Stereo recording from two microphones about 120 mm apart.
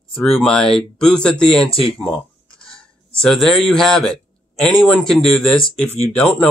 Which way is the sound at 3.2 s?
5° left (ahead or behind).